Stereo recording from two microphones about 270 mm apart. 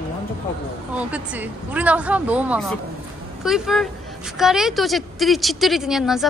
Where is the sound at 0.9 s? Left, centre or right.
Centre.